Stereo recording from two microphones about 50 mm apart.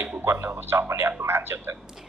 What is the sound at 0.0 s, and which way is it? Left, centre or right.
Speech, right.